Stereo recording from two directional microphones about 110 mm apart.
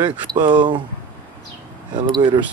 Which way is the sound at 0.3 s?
40° right (ahead or behind).